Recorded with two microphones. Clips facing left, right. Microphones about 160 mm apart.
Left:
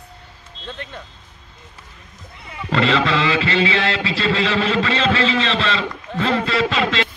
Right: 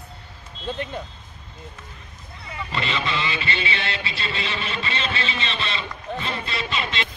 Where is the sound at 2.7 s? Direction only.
90° left.